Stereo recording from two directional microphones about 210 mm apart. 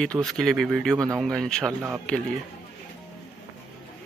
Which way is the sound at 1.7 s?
10° right (ahead or behind).